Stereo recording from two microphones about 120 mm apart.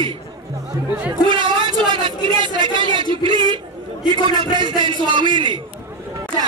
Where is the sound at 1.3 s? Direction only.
40° right (ahead or behind).